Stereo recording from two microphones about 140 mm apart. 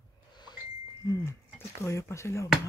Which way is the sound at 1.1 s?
20° left (ahead or behind).